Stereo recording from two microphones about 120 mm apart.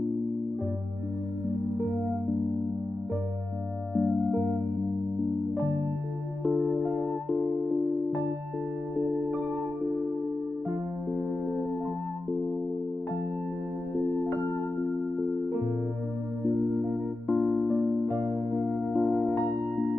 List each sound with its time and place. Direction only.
3.9 s music: 5° left (ahead or behind)
6.5 s music: 15° left (ahead or behind)
16.5 s music: 15° right (ahead or behind)
17.3 s electric piano: centre (ahead or behind)
18.1 s music: 25° right (ahead or behind)
18.9 s music: 5° left (ahead or behind)